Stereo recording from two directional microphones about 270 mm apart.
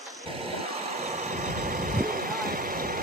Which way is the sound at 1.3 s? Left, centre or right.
Right.